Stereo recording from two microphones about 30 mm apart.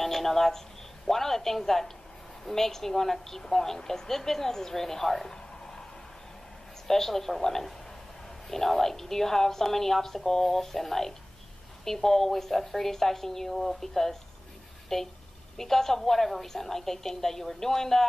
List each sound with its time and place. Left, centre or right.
0.0 s a woman's voice: centre
6.9 s a woman's voice: centre